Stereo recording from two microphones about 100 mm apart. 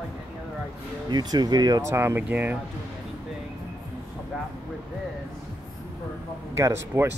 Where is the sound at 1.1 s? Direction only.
45° right (ahead or behind).